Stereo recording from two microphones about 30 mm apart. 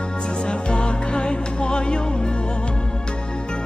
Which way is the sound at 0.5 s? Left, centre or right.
Left.